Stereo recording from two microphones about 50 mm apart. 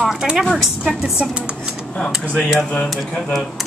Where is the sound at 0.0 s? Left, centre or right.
Centre.